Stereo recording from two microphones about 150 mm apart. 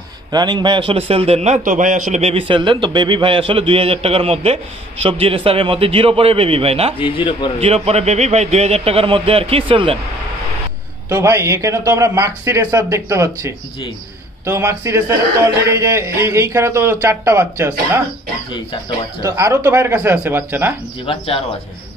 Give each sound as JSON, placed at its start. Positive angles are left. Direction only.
{"t": 0.3, "sound": "a man's voice", "side_deg": -30}
{"t": 7.0, "sound": "a man's voice", "side_deg": 35}
{"t": 7.6, "sound": "a man's voice", "side_deg": -45}
{"t": 11.1, "sound": "a man's voice", "side_deg": -15}
{"t": 19.2, "sound": "speech", "side_deg": -20}
{"t": 21.0, "sound": "a man's voice", "side_deg": 40}